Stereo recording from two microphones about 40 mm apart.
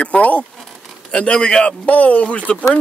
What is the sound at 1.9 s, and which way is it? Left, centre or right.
Speech, left.